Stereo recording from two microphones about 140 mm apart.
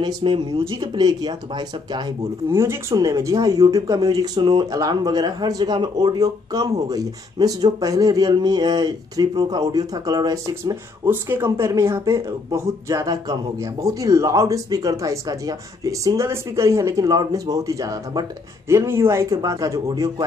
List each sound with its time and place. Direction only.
0.0 s speech: 35° right (ahead or behind)
2.5 s speech: 20° right (ahead or behind)